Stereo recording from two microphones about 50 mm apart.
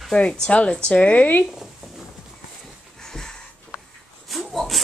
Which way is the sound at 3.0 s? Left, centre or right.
Centre.